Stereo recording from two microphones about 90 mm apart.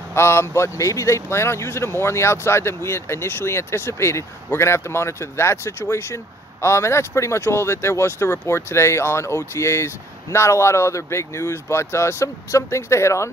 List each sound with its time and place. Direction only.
0.1 s a man's voice: 30° left (ahead or behind)